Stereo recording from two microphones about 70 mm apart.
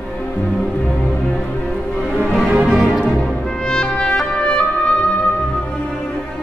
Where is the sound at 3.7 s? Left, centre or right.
Centre.